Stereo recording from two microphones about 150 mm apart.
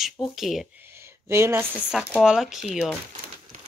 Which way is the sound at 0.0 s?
Centre (ahead or behind).